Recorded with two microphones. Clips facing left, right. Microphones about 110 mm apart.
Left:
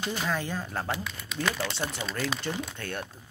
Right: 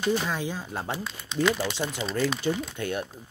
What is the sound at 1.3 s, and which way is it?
Speech, 30° right (ahead or behind).